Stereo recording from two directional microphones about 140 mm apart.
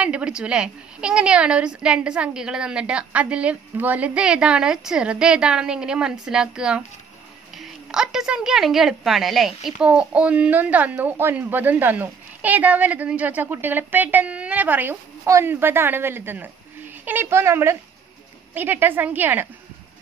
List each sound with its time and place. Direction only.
0.0 s a woman's voice: 10° right (ahead or behind)